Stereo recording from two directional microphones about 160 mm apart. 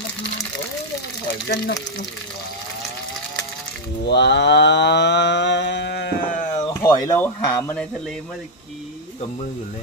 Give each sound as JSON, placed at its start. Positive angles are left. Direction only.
{"t": 4.0, "sound": "cattle", "side_deg": 90}
{"t": 6.6, "sound": "speech", "side_deg": 25}